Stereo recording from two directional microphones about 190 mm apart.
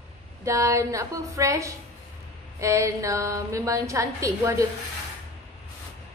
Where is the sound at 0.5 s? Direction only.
15° right (ahead or behind).